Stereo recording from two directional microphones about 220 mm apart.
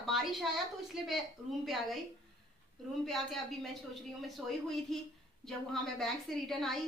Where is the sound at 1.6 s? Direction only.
Centre (ahead or behind).